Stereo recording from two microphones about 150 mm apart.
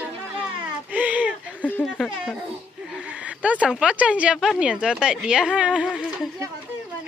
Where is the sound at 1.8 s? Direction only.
Centre (ahead or behind).